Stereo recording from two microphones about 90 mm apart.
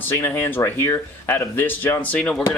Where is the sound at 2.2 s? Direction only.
10° left (ahead or behind).